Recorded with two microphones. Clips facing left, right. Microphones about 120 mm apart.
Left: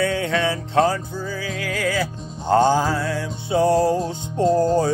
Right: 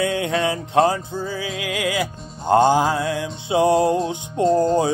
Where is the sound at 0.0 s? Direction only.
15° right (ahead or behind).